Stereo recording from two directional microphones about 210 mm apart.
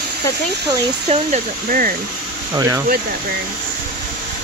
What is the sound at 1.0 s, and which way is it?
Speech, 35° right (ahead or behind).